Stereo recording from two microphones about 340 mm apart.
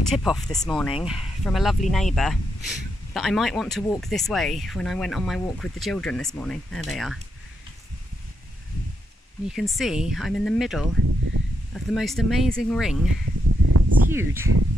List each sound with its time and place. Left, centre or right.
0.1 s speech: centre
9.5 s speech: centre
13.2 s a sound: right
14.1 s speech: centre